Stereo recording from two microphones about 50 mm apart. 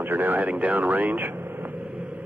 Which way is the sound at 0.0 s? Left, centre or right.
Right.